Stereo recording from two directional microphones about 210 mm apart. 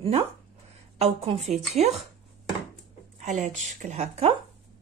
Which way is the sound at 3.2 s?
35° right (ahead or behind).